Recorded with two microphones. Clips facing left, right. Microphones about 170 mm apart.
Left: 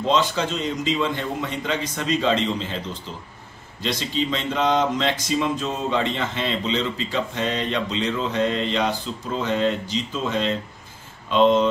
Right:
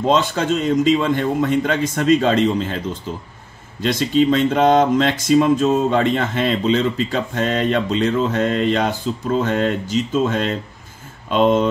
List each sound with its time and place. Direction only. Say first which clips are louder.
0.0 s speech: right 4 dB; 50° right (ahead or behind)